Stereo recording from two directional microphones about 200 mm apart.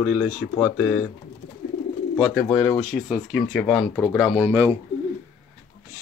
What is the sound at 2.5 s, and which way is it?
Speech, 20° left (ahead or behind).